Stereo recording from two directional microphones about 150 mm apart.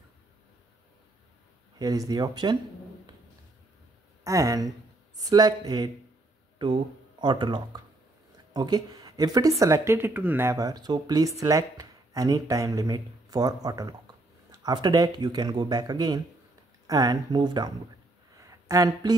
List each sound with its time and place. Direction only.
1.8 s speech: 25° right (ahead or behind)
4.2 s speech: 20° right (ahead or behind)
18.4 s a sound: 20° right (ahead or behind)